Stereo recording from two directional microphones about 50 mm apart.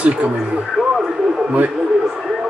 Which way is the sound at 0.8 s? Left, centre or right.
Centre.